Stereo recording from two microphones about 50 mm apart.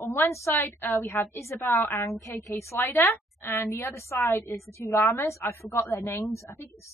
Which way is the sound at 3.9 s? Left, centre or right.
Left.